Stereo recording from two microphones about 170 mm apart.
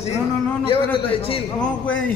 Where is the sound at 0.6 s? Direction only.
30° left (ahead or behind).